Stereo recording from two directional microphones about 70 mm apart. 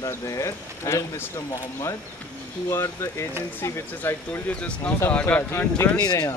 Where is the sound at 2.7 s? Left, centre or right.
Left.